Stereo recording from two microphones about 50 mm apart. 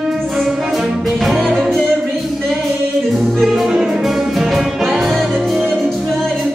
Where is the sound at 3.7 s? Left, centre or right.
Centre.